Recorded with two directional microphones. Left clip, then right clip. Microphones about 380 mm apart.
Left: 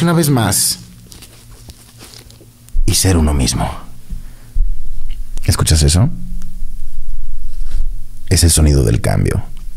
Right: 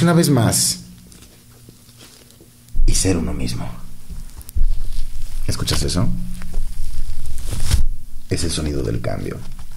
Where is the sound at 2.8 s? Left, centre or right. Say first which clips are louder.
Left 5 dB; left.